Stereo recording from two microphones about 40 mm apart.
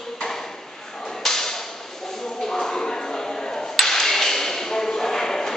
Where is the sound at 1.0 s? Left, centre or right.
Centre.